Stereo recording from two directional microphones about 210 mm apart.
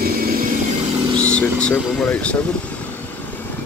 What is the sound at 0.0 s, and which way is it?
Vehicle, 45° right (ahead or behind).